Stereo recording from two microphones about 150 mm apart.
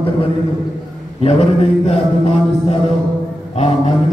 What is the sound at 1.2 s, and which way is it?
Mantra, 40° left (ahead or behind).